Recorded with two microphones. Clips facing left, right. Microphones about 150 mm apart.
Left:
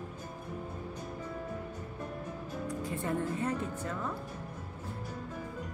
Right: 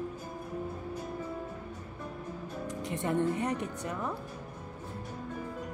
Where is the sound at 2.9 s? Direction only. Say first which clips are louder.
Right 6 dB; 20° right (ahead or behind).